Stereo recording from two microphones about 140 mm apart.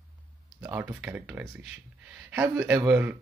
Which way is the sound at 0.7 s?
10° right (ahead or behind).